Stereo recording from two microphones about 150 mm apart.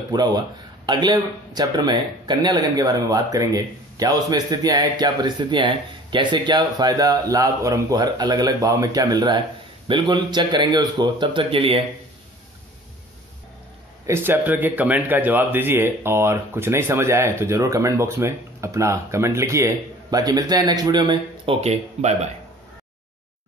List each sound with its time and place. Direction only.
0.1 s a man's voice: 25° right (ahead or behind)
14.0 s speech: 15° right (ahead or behind)
21.5 s speech: 45° right (ahead or behind)